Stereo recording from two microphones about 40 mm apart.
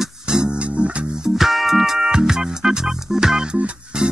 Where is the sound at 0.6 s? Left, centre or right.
Right.